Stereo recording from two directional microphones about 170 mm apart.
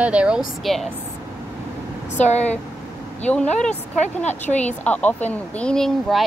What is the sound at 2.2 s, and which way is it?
Speech, 40° left (ahead or behind).